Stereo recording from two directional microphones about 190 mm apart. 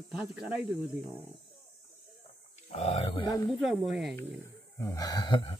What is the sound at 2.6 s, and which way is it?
Speech, 30° left (ahead or behind).